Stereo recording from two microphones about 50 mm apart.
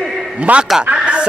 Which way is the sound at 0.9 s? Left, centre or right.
Right.